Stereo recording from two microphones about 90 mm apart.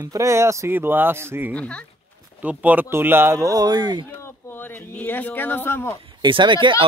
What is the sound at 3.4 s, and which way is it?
Speech, 45° right (ahead or behind).